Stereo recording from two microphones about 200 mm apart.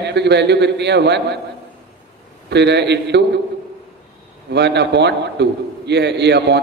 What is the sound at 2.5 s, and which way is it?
Speech, 60° right (ahead or behind).